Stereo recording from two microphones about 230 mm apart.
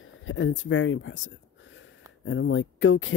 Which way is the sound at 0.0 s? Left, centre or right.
Left.